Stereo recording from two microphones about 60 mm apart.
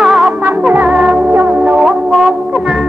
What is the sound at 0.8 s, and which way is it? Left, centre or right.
Music, centre.